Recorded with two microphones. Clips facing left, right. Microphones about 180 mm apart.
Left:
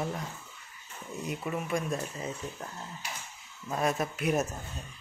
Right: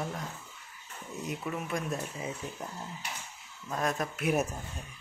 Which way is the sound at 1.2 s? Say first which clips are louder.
Left 2 dB; centre (ahead or behind).